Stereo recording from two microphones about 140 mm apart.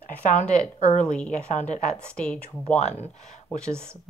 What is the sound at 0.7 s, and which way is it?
Speech, 50° left (ahead or behind).